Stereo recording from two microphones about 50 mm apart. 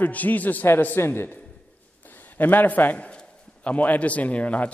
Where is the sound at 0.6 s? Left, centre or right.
Left.